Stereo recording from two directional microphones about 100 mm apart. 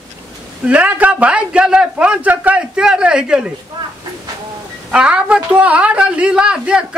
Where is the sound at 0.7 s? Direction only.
15° right (ahead or behind).